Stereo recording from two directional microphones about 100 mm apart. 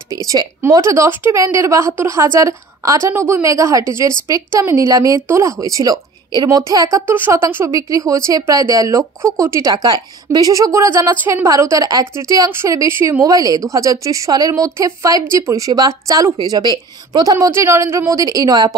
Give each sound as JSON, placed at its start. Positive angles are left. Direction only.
{"t": 0.1, "sound": "a woman's voice", "side_deg": -35}
{"t": 7.1, "sound": "a woman's voice", "side_deg": -25}
{"t": 11.1, "sound": "a woman's voice", "side_deg": -20}
{"t": 11.4, "sound": "a woman's voice", "side_deg": -30}
{"t": 13.2, "sound": "a woman's voice", "side_deg": -40}